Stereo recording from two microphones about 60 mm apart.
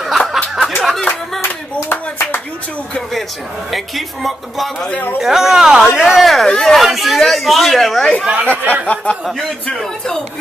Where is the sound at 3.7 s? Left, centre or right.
Centre.